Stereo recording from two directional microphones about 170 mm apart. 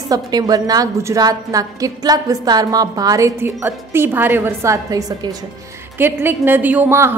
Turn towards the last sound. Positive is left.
turn(degrees=-15)  # may be behind; listen again after turning